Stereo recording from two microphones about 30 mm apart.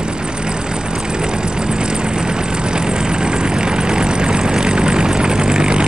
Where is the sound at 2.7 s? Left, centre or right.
Right.